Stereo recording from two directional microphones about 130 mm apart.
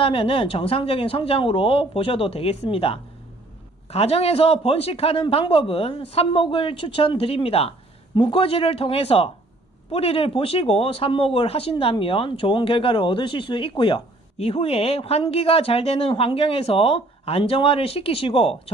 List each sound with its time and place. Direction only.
0.0 s speech: 45° left (ahead or behind)